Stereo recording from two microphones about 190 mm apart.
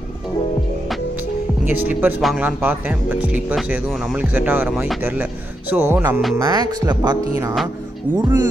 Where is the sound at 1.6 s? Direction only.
10° right (ahead or behind).